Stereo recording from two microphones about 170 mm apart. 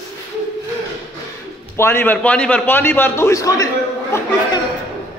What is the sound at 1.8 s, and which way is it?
A man's voice, 10° left (ahead or behind).